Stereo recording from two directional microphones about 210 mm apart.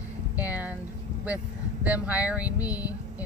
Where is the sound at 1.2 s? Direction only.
5° right (ahead or behind).